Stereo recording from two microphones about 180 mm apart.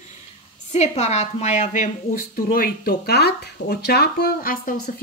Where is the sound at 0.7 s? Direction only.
40° left (ahead or behind).